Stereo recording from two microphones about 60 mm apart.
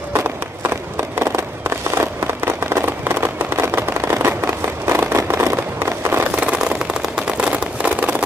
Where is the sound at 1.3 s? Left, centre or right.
Right.